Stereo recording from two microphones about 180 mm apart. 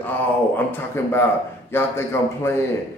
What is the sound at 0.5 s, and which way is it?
A man's voice, 10° left (ahead or behind).